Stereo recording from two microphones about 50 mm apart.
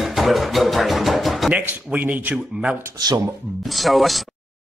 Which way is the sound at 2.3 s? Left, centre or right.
Right.